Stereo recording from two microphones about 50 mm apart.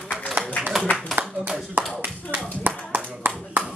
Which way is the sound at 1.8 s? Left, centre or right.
Right.